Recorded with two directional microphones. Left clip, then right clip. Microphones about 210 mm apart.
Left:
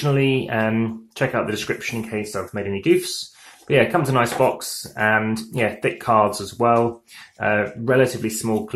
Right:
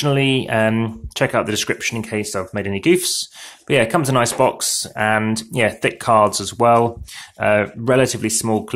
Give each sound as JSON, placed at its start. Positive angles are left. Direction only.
{"t": 0.0, "sound": "speech", "side_deg": -40}